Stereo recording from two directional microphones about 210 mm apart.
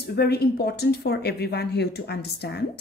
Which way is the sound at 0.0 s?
50° left (ahead or behind).